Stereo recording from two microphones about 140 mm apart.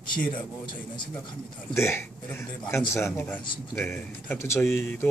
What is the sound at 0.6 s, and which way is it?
Speech, 35° left (ahead or behind).